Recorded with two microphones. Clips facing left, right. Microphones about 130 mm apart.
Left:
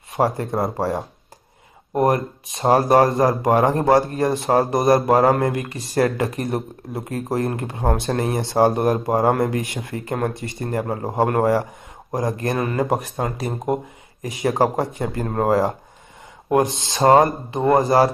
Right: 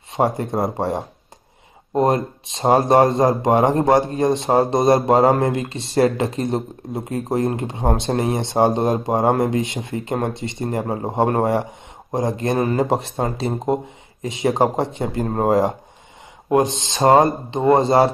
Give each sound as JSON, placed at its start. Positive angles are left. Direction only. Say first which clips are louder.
{"t": 0.1, "sound": "speech", "louder": "right 1 dB", "side_deg": -20}